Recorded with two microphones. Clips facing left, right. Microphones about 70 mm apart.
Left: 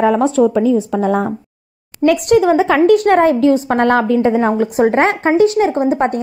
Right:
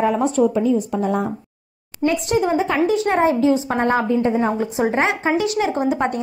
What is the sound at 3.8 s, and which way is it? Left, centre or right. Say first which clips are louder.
Speech: left 6 dB; left.